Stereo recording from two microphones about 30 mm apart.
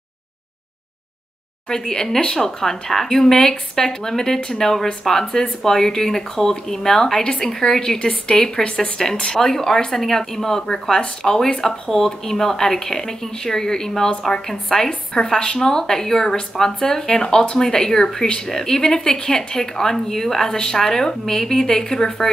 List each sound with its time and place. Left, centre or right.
1.7 s speech: left
8.0 s speech: left
9.4 s speech: centre